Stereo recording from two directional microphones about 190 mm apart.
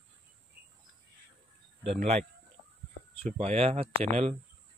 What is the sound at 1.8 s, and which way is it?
Speech, 35° right (ahead or behind).